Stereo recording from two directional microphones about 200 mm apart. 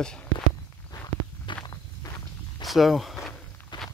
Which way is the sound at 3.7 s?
25° left (ahead or behind).